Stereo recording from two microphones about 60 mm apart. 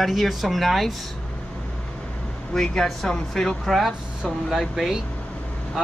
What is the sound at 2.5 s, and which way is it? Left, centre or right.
Speech, centre.